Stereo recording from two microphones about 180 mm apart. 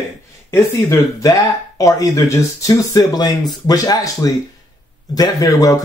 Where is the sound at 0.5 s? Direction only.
15° left (ahead or behind).